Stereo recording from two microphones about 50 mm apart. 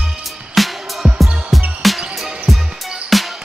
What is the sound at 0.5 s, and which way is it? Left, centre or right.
Music, centre.